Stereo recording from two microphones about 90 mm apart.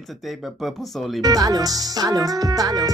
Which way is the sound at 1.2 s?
45° right (ahead or behind).